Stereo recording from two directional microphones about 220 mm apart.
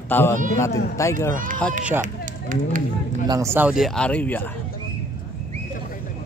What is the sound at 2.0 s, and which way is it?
Speech, 35° right (ahead or behind).